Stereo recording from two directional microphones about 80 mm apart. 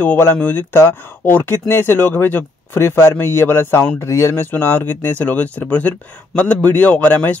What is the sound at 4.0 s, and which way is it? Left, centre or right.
Speech, left.